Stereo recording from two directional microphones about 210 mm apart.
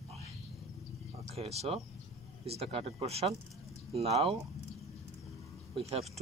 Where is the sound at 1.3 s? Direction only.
30° right (ahead or behind).